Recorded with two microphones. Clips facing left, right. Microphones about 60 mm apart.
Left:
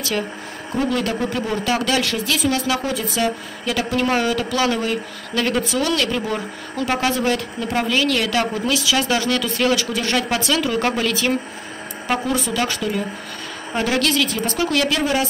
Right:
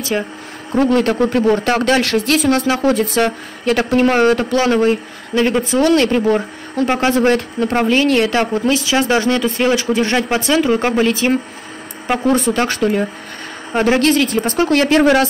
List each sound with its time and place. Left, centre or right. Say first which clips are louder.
0.7 s speech: right 7 dB; right
5.3 s speech: right 6 dB; right
5.7 s speech: right 8 dB; right
12.3 s speech: right 6 dB; right
13.7 s speech: right 6 dB; right